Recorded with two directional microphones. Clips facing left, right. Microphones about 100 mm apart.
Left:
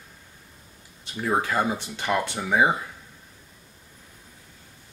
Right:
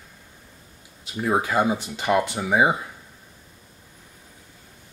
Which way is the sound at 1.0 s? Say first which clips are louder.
Right 2 dB; 10° right (ahead or behind).